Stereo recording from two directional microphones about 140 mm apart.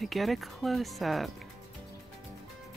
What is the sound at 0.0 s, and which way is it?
Speech, centre (ahead or behind).